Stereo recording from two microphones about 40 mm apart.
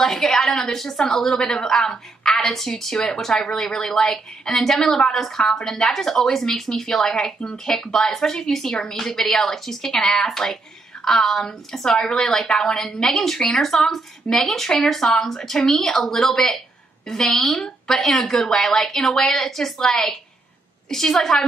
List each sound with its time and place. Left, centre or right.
0.0 s a woman's voice: centre
5.4 s speech: centre
5.8 s a woman's voice: centre